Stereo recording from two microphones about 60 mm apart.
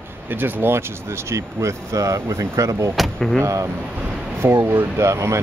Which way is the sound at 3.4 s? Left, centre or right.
Right.